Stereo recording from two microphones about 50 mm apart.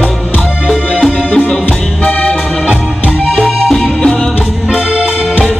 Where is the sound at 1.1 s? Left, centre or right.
Centre.